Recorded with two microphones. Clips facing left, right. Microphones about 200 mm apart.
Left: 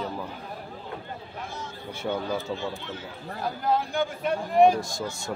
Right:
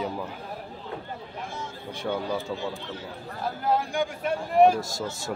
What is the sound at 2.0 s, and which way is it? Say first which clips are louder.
Speech: even; 5° left (ahead or behind).